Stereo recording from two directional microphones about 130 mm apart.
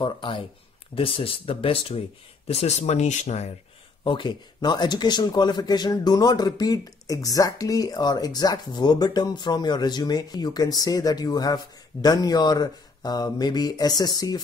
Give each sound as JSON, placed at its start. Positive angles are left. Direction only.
{"t": 0.0, "sound": "speech", "side_deg": 40}
{"t": 4.0, "sound": "speech", "side_deg": 40}